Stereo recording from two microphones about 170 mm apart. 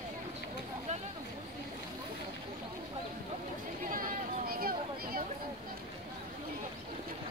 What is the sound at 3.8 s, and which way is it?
Chatter, 55° right (ahead or behind).